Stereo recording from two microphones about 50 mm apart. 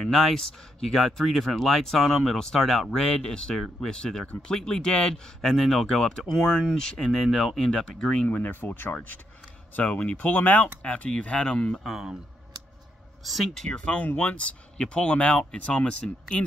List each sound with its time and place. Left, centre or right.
0.0 s speech: centre
8.4 s speech: left
10.6 s speech: left
11.8 s speech: centre
13.2 s speech: centre
13.7 s speech: left